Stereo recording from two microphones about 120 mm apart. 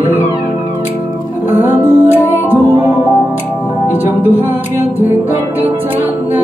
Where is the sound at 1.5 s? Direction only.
15° right (ahead or behind).